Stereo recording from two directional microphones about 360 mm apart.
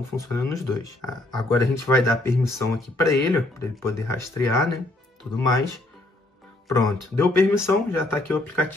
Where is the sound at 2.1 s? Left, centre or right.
Centre.